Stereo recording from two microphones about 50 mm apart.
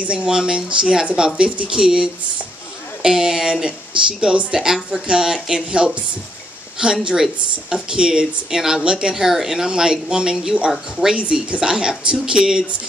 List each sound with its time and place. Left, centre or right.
0.0 s a woman's voice: right
11.1 s a woman's voice: right